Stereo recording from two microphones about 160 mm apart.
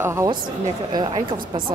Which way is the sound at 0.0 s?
15° right (ahead or behind).